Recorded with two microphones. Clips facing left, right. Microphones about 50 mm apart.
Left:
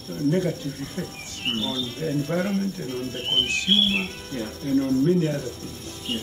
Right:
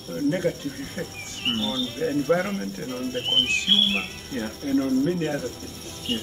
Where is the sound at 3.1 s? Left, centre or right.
Centre.